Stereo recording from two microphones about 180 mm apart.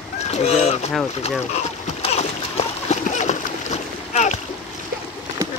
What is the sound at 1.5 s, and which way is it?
Splash, 35° left (ahead or behind).